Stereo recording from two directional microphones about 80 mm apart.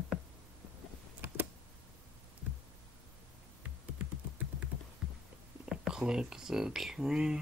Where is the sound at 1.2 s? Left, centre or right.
Right.